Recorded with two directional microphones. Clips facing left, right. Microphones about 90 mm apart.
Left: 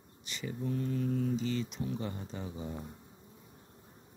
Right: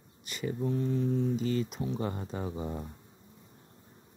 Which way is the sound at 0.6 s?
25° right (ahead or behind).